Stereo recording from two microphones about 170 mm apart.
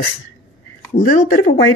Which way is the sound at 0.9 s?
50° left (ahead or behind).